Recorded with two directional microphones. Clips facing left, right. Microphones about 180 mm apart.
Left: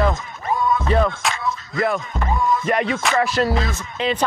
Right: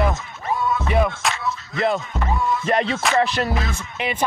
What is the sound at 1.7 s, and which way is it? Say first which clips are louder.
Music: even; 25° right (ahead or behind).